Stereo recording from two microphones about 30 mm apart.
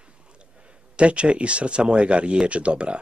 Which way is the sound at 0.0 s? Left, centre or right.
Right.